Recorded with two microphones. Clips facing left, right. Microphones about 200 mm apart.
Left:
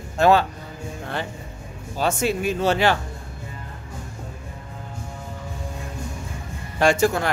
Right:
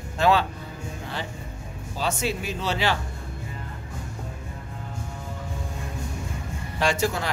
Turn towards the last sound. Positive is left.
turn(degrees=50)  # may be behind; listen again after turning